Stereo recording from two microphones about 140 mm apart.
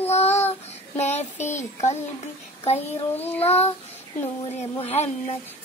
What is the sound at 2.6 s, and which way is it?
Speech, 50° left (ahead or behind).